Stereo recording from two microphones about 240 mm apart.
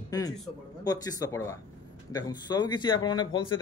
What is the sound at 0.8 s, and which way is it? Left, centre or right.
Speech, centre.